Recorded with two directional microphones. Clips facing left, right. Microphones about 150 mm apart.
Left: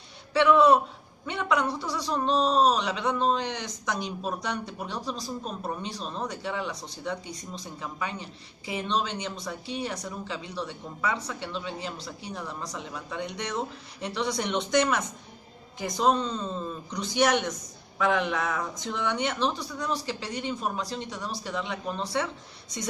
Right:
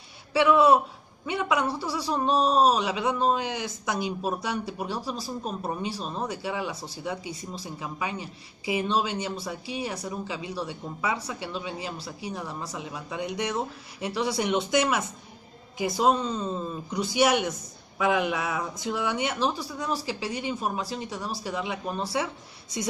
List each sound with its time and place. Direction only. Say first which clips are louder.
0.3 s a man's voice: even; 10° right (ahead or behind)